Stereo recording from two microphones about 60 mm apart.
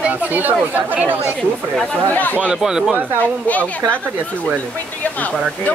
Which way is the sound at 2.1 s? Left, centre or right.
Left.